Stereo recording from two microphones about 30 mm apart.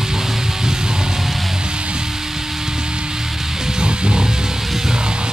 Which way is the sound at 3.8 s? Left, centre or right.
Right.